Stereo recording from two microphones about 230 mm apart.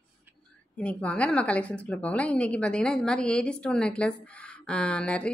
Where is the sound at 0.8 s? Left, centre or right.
Centre.